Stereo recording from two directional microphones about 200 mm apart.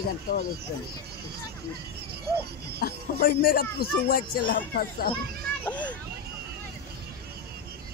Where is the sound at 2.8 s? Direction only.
45° left (ahead or behind).